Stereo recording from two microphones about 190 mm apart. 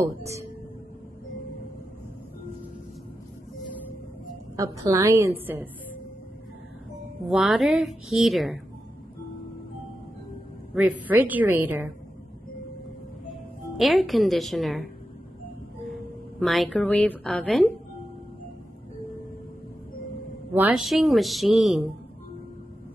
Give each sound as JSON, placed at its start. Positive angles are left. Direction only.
{"t": 0.0, "sound": "a woman's voice", "side_deg": -15}
{"t": 4.6, "sound": "a woman's voice", "side_deg": -15}
{"t": 7.2, "sound": "speech", "side_deg": 0}
{"t": 10.7, "sound": "a woman's voice", "side_deg": -5}
{"t": 13.3, "sound": "a woman's voice", "side_deg": 0}
{"t": 20.5, "sound": "speech", "side_deg": -5}